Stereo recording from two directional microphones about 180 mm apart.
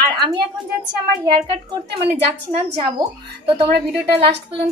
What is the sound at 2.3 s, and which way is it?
Speech, 35° right (ahead or behind).